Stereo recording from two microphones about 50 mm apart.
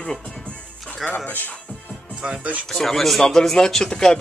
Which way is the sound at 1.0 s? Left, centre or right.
Centre.